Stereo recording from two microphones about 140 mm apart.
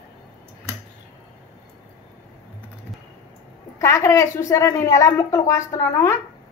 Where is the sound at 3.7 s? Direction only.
20° left (ahead or behind).